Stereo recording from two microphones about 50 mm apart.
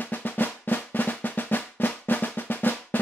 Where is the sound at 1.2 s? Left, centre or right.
Left.